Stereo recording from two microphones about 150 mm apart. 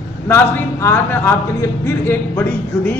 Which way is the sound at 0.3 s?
20° left (ahead or behind).